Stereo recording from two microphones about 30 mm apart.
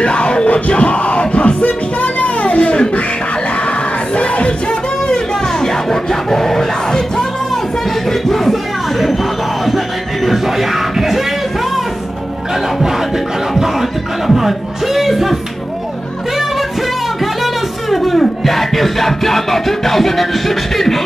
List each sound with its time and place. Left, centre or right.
0.0 s music: left
0.5 s music: left
4.1 s music: left
5.0 s speech: left
8.1 s music: centre
10.2 s speech: centre
13.6 s speech: centre
17.2 s music: centre